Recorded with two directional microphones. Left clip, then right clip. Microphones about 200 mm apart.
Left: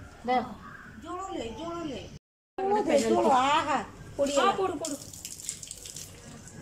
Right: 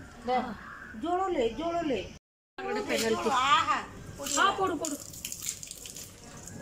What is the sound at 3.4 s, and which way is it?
Speech, 65° left (ahead or behind).